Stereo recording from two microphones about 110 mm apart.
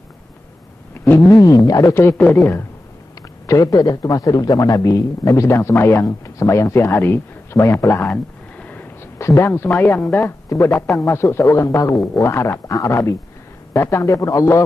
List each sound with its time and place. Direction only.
0.9 s a sound: 20° left (ahead or behind)
1.3 s a man's voice: 35° left (ahead or behind)
8.1 s a sound: 10° left (ahead or behind)
9.2 s speech: 25° left (ahead or behind)
10.7 s a man's voice: centre (ahead or behind)
11.1 s a man's voice: 25° left (ahead or behind)